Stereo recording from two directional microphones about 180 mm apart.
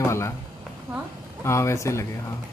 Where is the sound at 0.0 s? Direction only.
15° left (ahead or behind).